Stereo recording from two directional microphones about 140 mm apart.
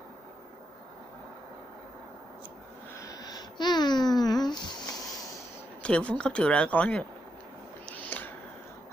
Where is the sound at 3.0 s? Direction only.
25° left (ahead or behind).